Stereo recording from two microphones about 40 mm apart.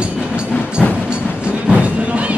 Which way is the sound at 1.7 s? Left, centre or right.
Right.